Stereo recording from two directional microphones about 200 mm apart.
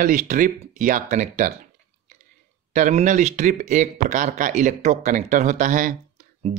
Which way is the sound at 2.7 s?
40° right (ahead or behind).